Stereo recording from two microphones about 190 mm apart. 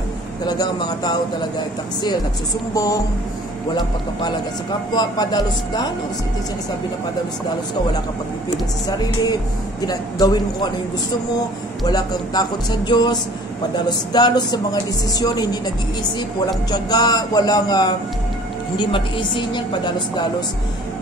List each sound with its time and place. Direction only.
0.5 s speech: 20° left (ahead or behind)
2.7 s speech: 15° left (ahead or behind)
4.9 s speech: 20° left (ahead or behind)
8.8 s speech: 20° left (ahead or behind)